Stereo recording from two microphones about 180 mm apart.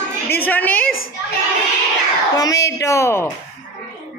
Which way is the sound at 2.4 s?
20° left (ahead or behind).